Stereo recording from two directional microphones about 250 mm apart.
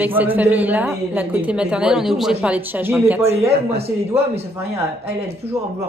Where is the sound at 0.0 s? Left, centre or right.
Centre.